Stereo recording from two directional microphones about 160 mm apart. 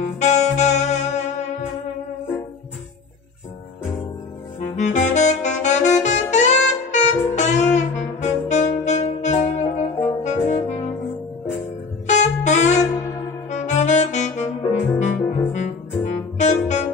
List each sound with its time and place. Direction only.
0.0 s music: 45° left (ahead or behind)
4.6 s saxophone: 50° left (ahead or behind)
10.2 s music: 45° left (ahead or behind)
12.1 s saxophone: 45° left (ahead or behind)
16.3 s music: 45° left (ahead or behind)